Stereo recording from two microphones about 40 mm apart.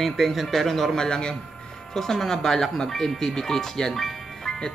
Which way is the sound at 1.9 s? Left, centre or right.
Centre.